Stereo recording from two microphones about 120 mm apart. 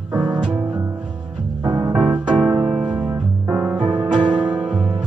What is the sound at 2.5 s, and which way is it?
Music, 30° right (ahead or behind).